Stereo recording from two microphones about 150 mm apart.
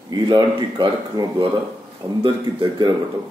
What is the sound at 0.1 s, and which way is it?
A man's voice, 30° right (ahead or behind).